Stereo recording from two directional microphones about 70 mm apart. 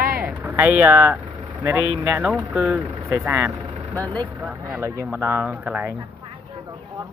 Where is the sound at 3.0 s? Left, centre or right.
Right.